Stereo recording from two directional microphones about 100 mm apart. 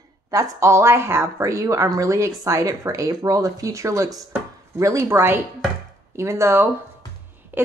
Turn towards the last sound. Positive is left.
turn(degrees=-20)  # may be behind; listen again after turning